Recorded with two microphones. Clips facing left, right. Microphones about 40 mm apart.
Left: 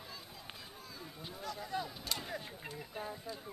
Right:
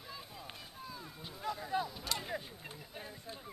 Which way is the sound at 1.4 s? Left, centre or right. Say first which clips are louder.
Right 4 dB; centre.